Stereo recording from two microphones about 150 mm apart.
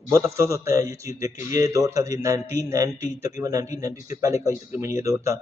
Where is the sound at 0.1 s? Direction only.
20° right (ahead or behind).